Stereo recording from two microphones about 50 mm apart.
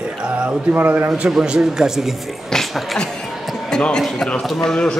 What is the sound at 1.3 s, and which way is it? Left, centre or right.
Speech, centre.